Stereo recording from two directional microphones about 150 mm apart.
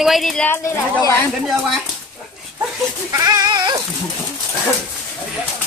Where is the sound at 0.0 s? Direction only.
Centre (ahead or behind).